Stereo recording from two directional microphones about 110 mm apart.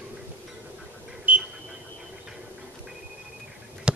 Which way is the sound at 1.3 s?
15° right (ahead or behind).